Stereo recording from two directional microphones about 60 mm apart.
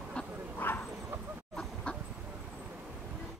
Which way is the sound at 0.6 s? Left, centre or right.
Left.